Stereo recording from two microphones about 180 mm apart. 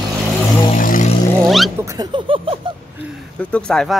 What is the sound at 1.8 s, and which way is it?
Speech, 20° right (ahead or behind).